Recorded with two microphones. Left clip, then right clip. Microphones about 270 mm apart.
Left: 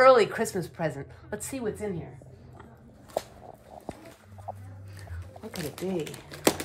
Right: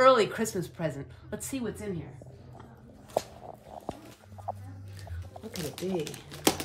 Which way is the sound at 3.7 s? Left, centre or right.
Left.